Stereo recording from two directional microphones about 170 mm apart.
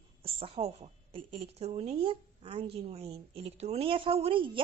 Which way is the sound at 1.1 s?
35° right (ahead or behind).